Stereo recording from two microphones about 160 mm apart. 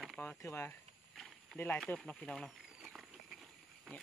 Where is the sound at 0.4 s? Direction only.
15° left (ahead or behind).